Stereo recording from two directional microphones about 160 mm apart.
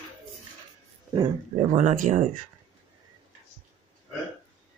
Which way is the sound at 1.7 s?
50° right (ahead or behind).